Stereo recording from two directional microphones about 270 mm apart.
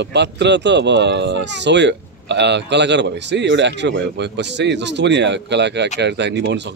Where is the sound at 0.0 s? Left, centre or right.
Right.